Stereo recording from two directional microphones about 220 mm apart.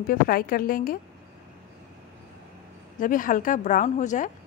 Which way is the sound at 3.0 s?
40° left (ahead or behind).